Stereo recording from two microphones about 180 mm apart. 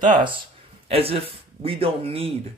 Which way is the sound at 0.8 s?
35° right (ahead or behind).